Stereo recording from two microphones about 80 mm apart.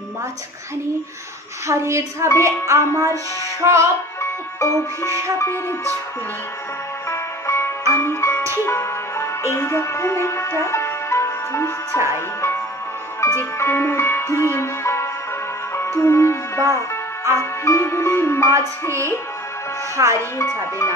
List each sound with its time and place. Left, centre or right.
1.7 s music: right
4.2 s music: left
7.1 s music: left
13.2 s speech: left
15.7 s music: left
18.5 s music: right
20.0 s speech: right
20.3 s music: left